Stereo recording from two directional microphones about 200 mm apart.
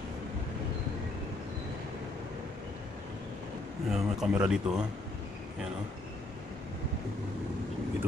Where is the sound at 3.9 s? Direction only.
5° right (ahead or behind).